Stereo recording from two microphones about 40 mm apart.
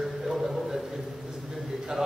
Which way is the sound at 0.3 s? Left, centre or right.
Centre.